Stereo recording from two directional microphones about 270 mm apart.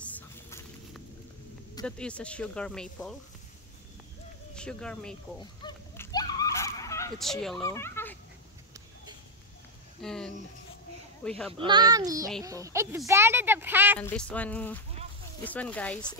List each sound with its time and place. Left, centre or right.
0.0 s a sound: centre
1.9 s speech: centre
4.6 s speech: centre
5.4 s goose: centre
7.2 s speech: centre
10.0 s speech: centre
11.5 s speech: centre
13.9 s speech: centre